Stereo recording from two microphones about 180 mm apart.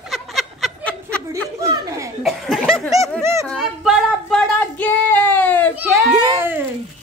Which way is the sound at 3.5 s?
Centre (ahead or behind).